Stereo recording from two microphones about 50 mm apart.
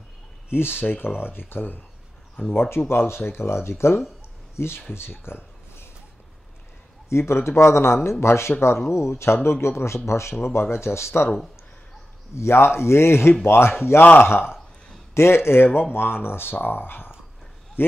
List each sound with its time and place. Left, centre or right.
0.5 s speech: left
7.1 s speech: left
10.4 s speech: left
12.4 s a man's voice: left